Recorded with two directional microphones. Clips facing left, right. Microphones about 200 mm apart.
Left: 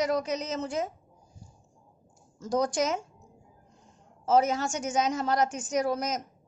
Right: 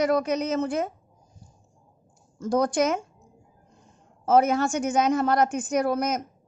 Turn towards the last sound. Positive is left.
turn(degrees=-60)  # may be behind; listen again after turning